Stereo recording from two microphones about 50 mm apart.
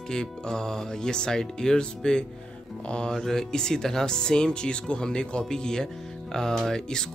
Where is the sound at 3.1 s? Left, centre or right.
Centre.